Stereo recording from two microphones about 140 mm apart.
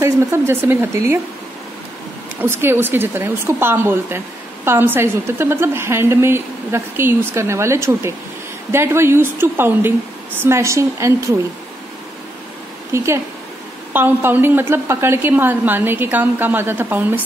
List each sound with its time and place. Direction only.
0.0 s speech: 20° right (ahead or behind)
2.4 s a woman's voice: 15° right (ahead or behind)
12.9 s a woman's voice: 20° right (ahead or behind)